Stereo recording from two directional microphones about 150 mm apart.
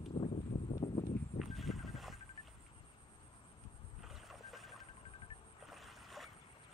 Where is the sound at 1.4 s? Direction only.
Centre (ahead or behind).